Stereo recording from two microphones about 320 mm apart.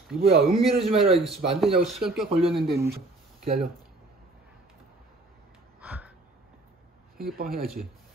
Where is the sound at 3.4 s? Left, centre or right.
Centre.